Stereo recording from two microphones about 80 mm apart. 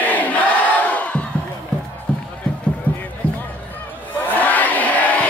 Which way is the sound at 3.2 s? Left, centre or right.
Centre.